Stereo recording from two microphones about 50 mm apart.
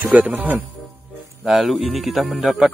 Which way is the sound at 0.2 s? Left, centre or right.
Right.